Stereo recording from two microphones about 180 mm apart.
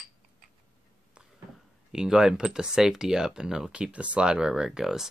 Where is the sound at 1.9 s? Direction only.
5° right (ahead or behind).